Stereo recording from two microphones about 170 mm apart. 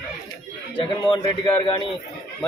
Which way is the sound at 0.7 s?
30° left (ahead or behind).